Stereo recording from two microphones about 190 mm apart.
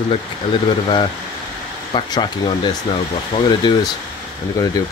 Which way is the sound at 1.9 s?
20° left (ahead or behind).